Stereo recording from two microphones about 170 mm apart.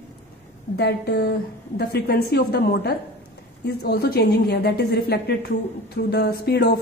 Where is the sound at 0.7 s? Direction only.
80° left.